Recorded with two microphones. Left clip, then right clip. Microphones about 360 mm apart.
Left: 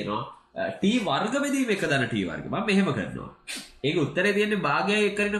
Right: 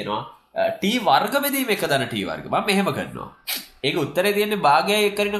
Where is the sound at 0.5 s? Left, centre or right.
Right.